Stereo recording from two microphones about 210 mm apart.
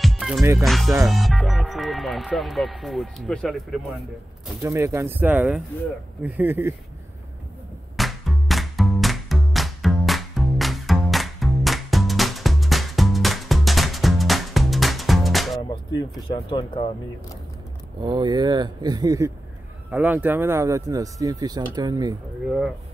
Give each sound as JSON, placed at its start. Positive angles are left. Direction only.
{"t": 0.0, "sound": "music", "side_deg": 0}
{"t": 1.0, "sound": "speech", "side_deg": 0}
{"t": 4.6, "sound": "speech", "side_deg": -15}
{"t": 7.9, "sound": "music", "side_deg": 0}
{"t": 15.7, "sound": "speech", "side_deg": 20}
{"t": 18.0, "sound": "speech", "side_deg": -20}